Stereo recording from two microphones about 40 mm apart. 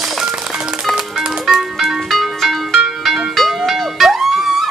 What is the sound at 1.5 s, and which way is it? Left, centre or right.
Music, centre.